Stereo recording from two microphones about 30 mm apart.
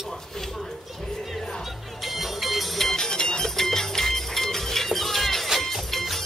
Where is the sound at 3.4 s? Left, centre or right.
Centre.